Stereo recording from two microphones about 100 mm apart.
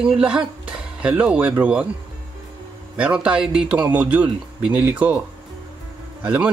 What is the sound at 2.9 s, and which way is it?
A man's voice, 10° right (ahead or behind).